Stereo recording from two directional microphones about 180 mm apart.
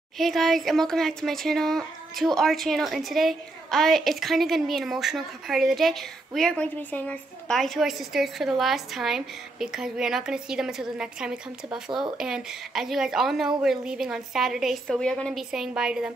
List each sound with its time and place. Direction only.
0.2 s speech: centre (ahead or behind)